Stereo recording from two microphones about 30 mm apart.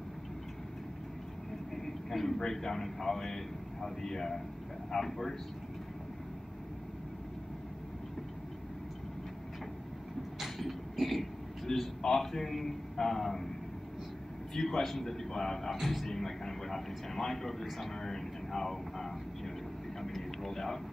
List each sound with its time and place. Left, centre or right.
1.8 s a man's voice: centre
10.4 s vehicle: centre
12.0 s speech: centre
14.5 s speech: centre
15.8 s a man's voice: centre
16.1 s speech: centre
20.0 s a sound: centre